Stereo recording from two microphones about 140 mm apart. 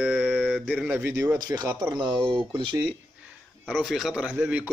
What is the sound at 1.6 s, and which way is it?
Speech, 30° right (ahead or behind).